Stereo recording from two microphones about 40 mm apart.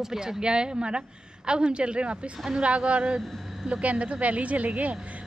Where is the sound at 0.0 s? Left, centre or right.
Centre.